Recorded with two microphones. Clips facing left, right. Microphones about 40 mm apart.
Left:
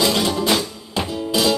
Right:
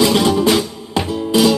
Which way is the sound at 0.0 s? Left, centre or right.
Centre.